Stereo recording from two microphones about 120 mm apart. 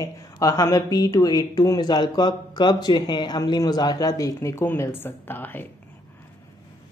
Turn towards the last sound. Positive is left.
turn(degrees=15)  # may be behind; listen again after turning